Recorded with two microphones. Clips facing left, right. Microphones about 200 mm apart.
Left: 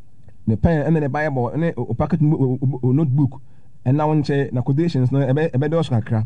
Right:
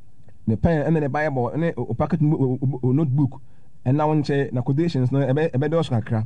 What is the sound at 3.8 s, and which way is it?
A man's voice, 15° left (ahead or behind).